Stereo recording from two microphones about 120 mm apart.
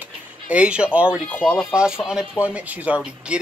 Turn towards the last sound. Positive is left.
turn(degrees=-10)  # may be behind; listen again after turning